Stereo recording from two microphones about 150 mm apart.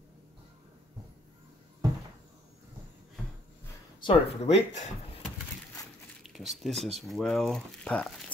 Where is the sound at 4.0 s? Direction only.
40° left (ahead or behind).